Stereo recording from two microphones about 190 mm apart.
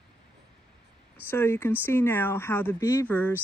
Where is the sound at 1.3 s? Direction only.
10° left (ahead or behind).